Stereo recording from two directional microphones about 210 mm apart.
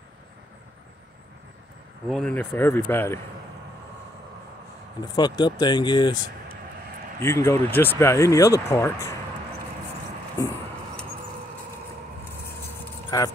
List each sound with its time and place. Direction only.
2.0 s speech: 5° left (ahead or behind)
5.0 s speech: 20° left (ahead or behind)
13.1 s speech: 15° left (ahead or behind)